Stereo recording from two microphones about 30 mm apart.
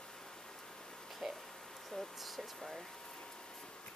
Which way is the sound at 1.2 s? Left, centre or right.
Centre.